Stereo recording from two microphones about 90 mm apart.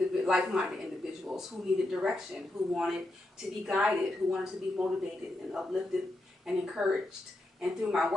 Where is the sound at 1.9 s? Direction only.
5° right (ahead or behind).